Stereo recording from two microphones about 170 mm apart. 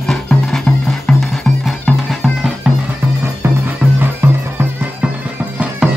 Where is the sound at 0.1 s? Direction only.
5° left (ahead or behind).